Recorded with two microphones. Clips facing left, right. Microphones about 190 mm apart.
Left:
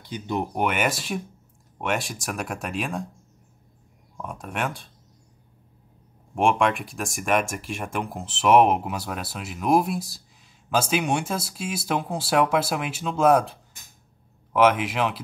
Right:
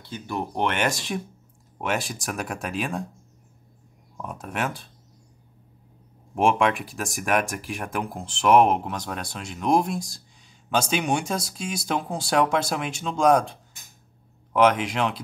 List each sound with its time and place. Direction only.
0.0 s speech: 15° left (ahead or behind)
0.7 s speech: 5° left (ahead or behind)
4.2 s speech: centre (ahead or behind)
6.3 s speech: centre (ahead or behind)